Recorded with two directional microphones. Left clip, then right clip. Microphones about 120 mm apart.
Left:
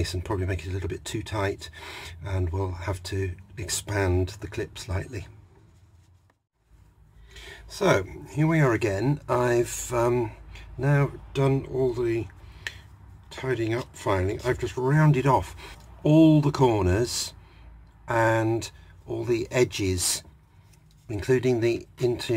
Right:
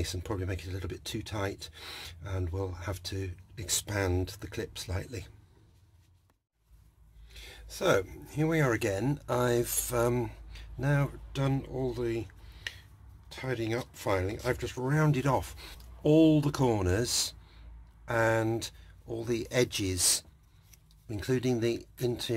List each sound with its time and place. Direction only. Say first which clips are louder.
0.0 s speech: left 6 dB; 20° right (ahead or behind)
7.3 s speech: left 7 dB; 15° right (ahead or behind)